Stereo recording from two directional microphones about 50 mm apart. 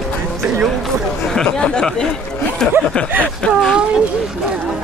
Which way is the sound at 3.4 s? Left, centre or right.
Left.